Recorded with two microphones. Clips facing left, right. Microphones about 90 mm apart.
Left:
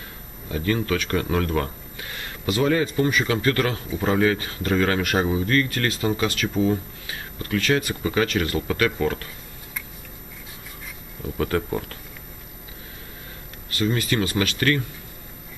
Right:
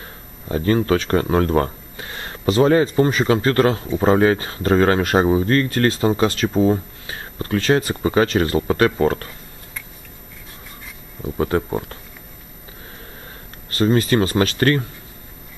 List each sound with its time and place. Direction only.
0.5 s speech: 35° right (ahead or behind)
11.2 s speech: 25° right (ahead or behind)
13.7 s speech: 35° right (ahead or behind)